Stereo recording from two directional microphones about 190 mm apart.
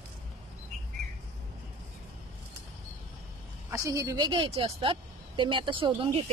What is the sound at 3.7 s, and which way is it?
A woman's voice, 15° right (ahead or behind).